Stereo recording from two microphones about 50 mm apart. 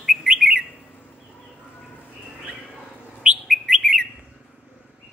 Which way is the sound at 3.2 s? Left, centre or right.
Right.